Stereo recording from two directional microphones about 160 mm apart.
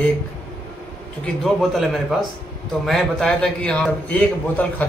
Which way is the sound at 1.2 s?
Centre (ahead or behind).